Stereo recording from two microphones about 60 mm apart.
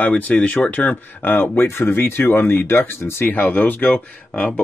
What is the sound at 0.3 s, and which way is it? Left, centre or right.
Speech, left.